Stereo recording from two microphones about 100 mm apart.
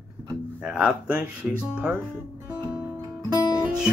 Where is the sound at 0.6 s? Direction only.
10° right (ahead or behind).